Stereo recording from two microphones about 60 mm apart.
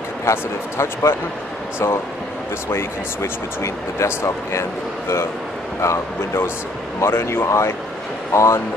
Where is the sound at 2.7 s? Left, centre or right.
Left.